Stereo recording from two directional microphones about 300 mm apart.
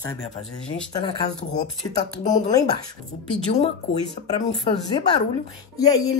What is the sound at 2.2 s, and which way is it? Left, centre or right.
Speech, left.